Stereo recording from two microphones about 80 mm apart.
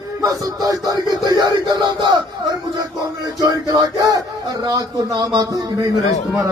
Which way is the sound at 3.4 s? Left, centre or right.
Right.